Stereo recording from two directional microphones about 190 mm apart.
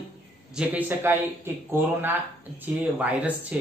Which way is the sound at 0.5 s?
10° right (ahead or behind).